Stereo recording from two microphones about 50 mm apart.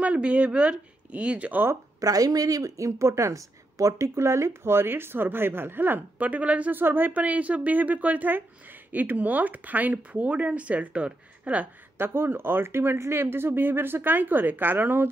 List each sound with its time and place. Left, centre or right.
0.0 s speech: right
2.8 s a woman's voice: right
6.7 s speech: right
12.0 s a woman's voice: right